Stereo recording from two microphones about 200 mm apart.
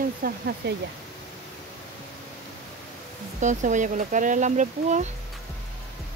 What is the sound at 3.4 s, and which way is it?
Speech, 40° right (ahead or behind).